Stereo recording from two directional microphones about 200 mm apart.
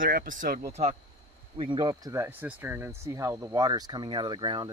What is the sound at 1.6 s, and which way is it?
Speech, 25° right (ahead or behind).